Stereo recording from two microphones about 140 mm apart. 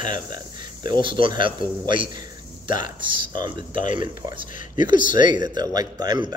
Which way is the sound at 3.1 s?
35° right (ahead or behind).